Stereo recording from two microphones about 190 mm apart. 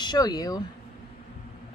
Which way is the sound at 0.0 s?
20° left (ahead or behind).